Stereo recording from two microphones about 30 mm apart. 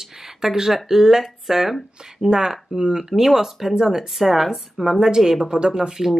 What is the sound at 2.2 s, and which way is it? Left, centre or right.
Speech, right.